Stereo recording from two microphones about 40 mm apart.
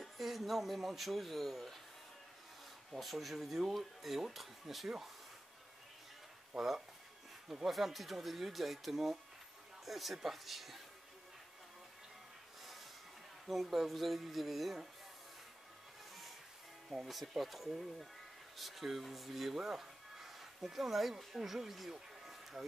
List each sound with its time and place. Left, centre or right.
0.0 s speech: centre
2.9 s speech: centre
6.5 s speech: centre
7.7 s speech: centre
13.5 s speech: centre
16.9 s speech: centre
22.2 s a sound: centre